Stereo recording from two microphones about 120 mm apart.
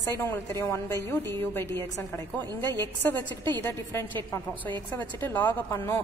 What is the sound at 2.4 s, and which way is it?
Speech, 35° right (ahead or behind).